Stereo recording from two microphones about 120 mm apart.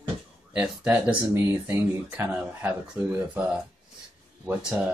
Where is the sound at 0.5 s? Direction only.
10° right (ahead or behind).